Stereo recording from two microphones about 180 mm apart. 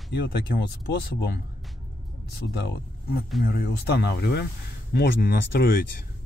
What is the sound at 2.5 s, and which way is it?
Speech, 65° left (ahead or behind).